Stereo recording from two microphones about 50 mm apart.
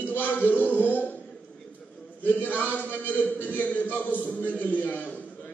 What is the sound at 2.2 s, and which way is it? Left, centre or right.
A man's voice, left.